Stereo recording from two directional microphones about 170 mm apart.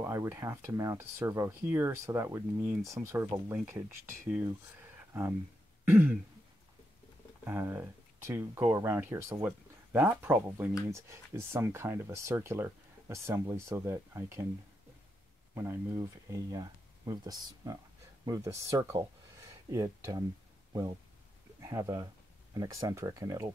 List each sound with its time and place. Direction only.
0.0 s speech: 15° right (ahead or behind)
5.9 s throat clearing: 10° right (ahead or behind)
7.4 s speech: 15° right (ahead or behind)
15.5 s speech: 15° right (ahead or behind)
21.5 s speech: 20° right (ahead or behind)